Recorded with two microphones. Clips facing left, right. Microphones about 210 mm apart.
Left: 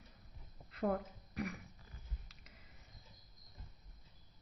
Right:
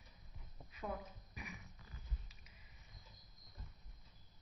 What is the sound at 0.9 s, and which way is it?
Speech, 75° left (ahead or behind).